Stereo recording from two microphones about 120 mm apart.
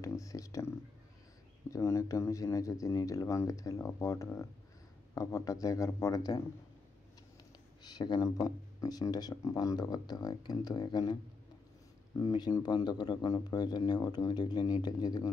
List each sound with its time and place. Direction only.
0.0 s a sound: 25° left (ahead or behind)
1.7 s speech: 25° left (ahead or behind)
8.0 s speech: 35° left (ahead or behind)
12.2 s speech: 35° left (ahead or behind)